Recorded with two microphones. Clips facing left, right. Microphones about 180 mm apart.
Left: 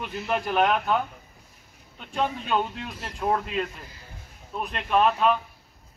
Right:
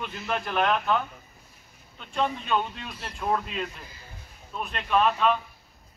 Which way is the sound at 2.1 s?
10° left (ahead or behind).